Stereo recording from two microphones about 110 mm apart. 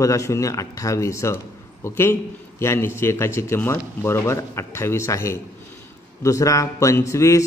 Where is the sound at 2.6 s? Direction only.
25° left (ahead or behind).